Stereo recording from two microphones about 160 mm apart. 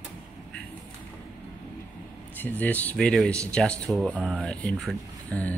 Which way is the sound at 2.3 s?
10° left (ahead or behind).